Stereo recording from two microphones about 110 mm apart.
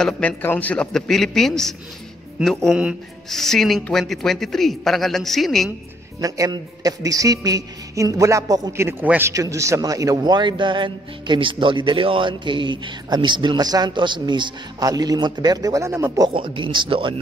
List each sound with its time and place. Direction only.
0.0 s a man's voice: 15° left (ahead or behind)
2.7 s a man's voice: 10° right (ahead or behind)
3.3 s a man's voice: 5° left (ahead or behind)
6.2 s a woman's voice: 30° right (ahead or behind)
8.8 s a man's voice: 20° right (ahead or behind)
9.3 s a man's voice: 30° right (ahead or behind)
16.3 s a man's voice: 50° right (ahead or behind)